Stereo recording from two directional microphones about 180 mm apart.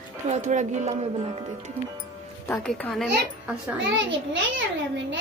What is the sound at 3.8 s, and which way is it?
Speech, 90° right.